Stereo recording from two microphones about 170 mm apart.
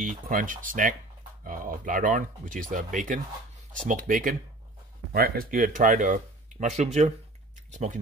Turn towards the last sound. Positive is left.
turn(degrees=-45)  # may be behind; listen again after turning